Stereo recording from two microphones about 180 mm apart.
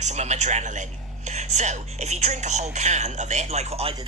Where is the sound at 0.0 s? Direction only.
40° right (ahead or behind).